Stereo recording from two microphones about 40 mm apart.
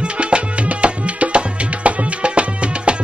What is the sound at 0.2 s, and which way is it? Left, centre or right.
Music, right.